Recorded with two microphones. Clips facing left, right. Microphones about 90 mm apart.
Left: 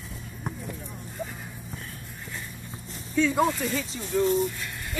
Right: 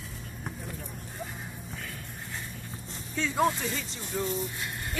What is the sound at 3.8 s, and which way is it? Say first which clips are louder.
Speech: left 7 dB; centre (ahead or behind).